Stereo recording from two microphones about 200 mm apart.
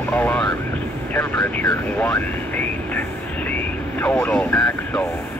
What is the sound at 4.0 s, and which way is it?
Vehicle, 5° left (ahead or behind).